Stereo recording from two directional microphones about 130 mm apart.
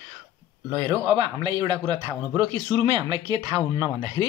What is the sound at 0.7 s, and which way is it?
Speech, 35° right (ahead or behind).